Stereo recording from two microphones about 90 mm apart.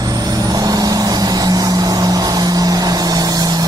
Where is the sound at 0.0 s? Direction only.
45° right (ahead or behind).